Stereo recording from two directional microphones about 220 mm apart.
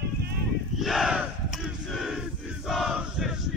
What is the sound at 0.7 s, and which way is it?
Battle cry, centre (ahead or behind).